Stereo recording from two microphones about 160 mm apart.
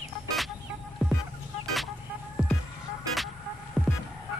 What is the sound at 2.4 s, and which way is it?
Music, 5° right (ahead or behind).